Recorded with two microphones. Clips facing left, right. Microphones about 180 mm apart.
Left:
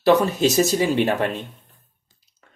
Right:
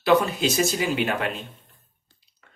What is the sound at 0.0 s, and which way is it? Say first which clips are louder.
Speech: left 3 dB; 40° left (ahead or behind).